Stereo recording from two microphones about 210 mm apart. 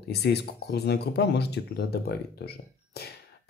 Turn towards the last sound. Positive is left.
turn(degrees=50)  # may be behind; listen again after turning